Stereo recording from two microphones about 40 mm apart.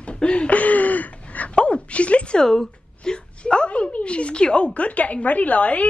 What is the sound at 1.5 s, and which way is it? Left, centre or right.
A woman's voice, left.